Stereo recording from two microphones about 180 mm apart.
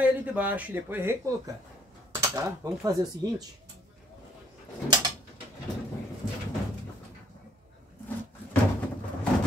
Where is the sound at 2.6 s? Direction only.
20° right (ahead or behind).